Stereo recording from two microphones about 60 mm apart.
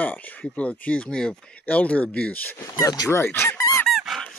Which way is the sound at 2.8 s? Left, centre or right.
Left.